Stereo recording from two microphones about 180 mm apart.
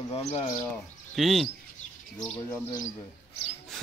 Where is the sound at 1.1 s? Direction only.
Centre (ahead or behind).